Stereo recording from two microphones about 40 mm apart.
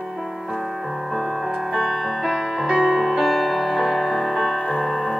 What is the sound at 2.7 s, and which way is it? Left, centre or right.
Music, centre.